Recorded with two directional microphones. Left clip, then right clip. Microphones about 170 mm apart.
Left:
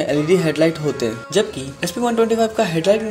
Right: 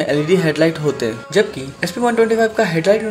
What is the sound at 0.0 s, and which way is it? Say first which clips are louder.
Speech: right 1 dB; 20° left (ahead or behind).